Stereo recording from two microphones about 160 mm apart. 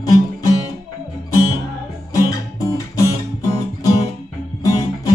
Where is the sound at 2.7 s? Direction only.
20° left (ahead or behind).